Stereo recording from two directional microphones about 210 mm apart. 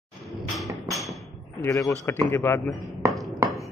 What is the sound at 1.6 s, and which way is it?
Speech, 15° left (ahead or behind).